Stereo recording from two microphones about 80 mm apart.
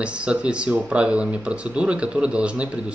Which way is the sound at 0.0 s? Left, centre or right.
Centre.